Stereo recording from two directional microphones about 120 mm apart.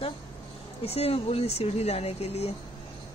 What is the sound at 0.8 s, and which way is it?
Speech, 55° left (ahead or behind).